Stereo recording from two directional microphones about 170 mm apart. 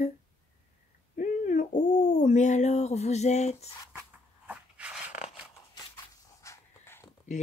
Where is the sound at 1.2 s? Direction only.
45° left (ahead or behind).